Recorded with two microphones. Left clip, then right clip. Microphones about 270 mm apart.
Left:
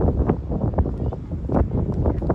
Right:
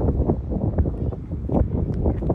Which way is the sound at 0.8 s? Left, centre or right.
Centre.